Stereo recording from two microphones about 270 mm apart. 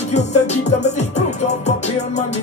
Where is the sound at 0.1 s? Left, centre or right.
Left.